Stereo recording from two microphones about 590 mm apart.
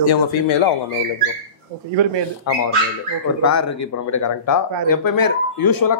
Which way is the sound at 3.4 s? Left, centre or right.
Left.